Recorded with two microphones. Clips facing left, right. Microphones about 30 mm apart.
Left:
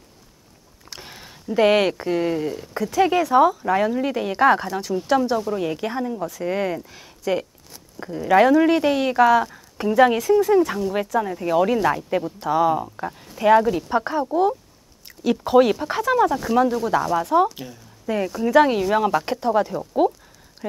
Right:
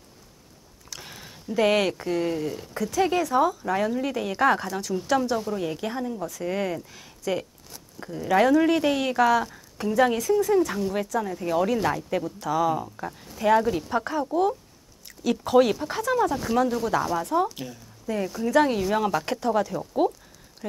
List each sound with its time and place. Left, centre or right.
0.9 s speech: centre; by 13.1 s left
13.4 s speech: centre
13.8 s speech: left
14.2 s speech: centre
17.1 s speech: centre